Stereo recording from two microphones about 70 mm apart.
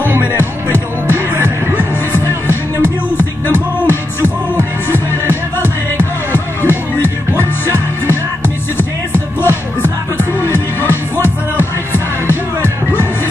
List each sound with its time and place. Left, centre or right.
0.0 s music: right
2.1 s music: left
8.7 s music: left